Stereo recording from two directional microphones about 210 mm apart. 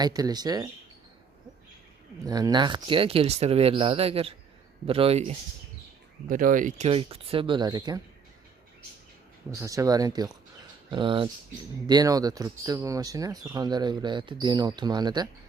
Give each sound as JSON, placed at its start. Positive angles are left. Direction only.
{"t": 0.0, "sound": "speech", "side_deg": -20}
{"t": 2.2, "sound": "speech", "side_deg": -20}
{"t": 9.5, "sound": "speech", "side_deg": -15}